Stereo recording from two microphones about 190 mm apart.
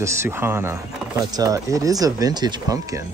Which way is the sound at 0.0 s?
15° right (ahead or behind).